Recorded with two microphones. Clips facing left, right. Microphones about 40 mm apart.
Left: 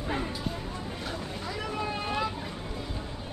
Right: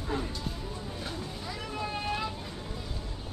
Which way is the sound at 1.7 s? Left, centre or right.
Centre.